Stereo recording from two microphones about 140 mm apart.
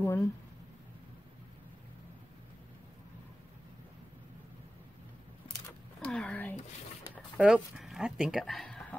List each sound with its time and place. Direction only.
0.0 s speech: 20° left (ahead or behind)
5.9 s a sound: 5° left (ahead or behind)
7.3 s speech: 5° right (ahead or behind)